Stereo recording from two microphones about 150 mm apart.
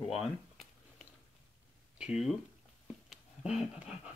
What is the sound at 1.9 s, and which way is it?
Speech, 5° right (ahead or behind).